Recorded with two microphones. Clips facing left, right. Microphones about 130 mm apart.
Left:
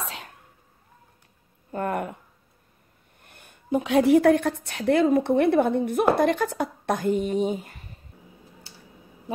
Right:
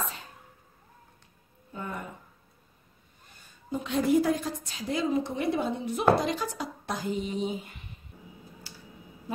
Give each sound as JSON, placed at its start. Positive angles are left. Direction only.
{"t": 0.0, "sound": "sneeze", "side_deg": 75}
{"t": 1.7, "sound": "a sound", "side_deg": 65}
{"t": 3.3, "sound": "a woman's voice", "side_deg": 60}